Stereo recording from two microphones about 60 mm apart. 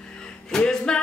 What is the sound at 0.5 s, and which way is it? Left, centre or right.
Music, centre.